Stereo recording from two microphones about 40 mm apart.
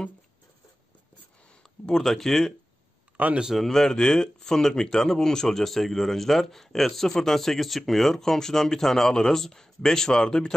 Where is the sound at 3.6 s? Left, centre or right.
Centre.